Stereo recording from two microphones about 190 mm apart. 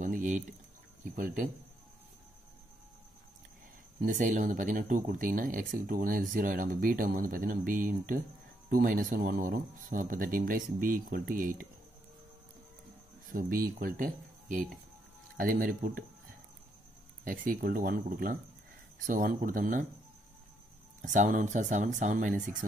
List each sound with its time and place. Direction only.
0.0 s pour: 45° right (ahead or behind)
1.1 s speech: 45° right (ahead or behind)
4.0 s speech: 45° right (ahead or behind)
13.3 s speech: 50° right (ahead or behind)
17.2 s speech: 45° right (ahead or behind)
21.0 s speech: 40° right (ahead or behind)